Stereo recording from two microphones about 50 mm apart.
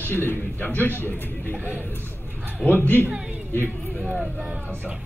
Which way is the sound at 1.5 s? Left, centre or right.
Right.